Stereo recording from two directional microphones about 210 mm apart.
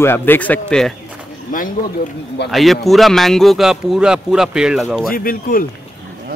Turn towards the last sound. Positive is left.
turn(degrees=45)  # may be behind; listen again after turning